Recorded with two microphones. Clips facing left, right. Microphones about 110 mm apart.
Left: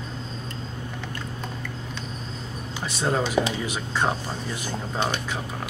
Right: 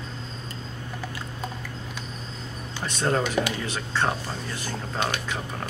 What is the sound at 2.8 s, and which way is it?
Speech, 5° left (ahead or behind).